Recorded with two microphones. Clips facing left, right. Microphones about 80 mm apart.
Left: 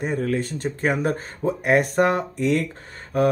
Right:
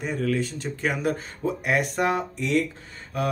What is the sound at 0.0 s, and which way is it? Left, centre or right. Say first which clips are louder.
Speech: left 2 dB; left.